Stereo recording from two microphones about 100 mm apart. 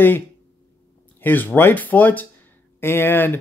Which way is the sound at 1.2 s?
20° left (ahead or behind).